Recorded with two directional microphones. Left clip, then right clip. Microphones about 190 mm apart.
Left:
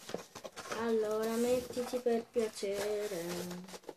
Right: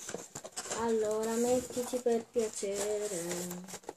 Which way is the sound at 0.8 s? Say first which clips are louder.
Right 2 dB; centre (ahead or behind).